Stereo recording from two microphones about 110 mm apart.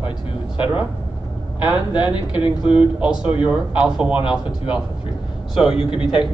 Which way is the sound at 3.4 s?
10° right (ahead or behind).